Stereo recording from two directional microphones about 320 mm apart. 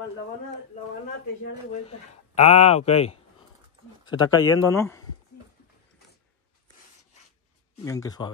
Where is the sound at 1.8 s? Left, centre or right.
Centre.